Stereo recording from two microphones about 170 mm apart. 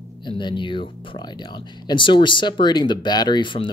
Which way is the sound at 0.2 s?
25° left (ahead or behind).